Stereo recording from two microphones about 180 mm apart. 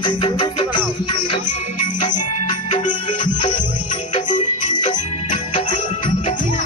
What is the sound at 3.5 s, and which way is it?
Music, 45° left (ahead or behind).